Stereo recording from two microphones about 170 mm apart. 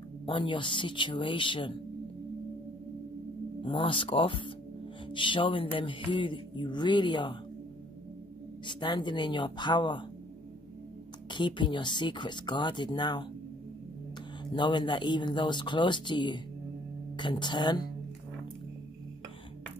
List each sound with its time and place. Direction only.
0.3 s music: 30° left (ahead or behind)
3.6 s speech: 30° left (ahead or behind)
5.1 s music: 30° left (ahead or behind)
8.6 s music: 25° left (ahead or behind)
11.2 s music: 25° left (ahead or behind)
14.5 s music: 25° left (ahead or behind)